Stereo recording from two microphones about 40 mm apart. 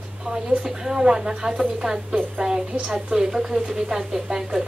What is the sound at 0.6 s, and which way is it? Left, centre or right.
Speech, centre.